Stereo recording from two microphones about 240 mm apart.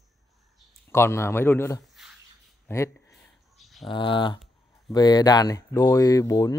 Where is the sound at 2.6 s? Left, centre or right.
Centre.